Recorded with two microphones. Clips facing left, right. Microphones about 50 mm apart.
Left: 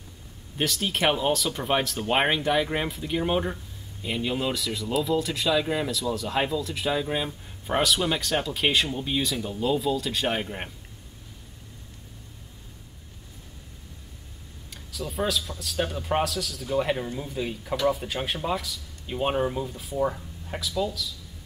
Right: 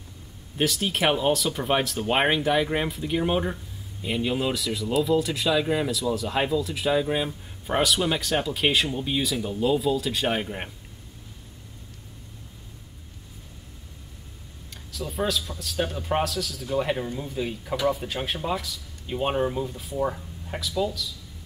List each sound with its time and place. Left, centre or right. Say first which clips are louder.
0.6 s speech: right 2 dB; centre
14.7 s speech: even; centre